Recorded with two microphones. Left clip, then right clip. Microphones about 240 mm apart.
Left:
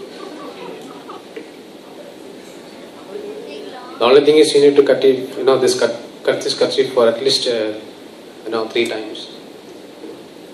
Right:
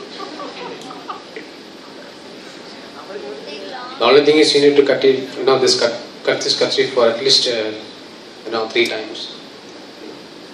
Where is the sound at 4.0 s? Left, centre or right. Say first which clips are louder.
Left 1 dB; right.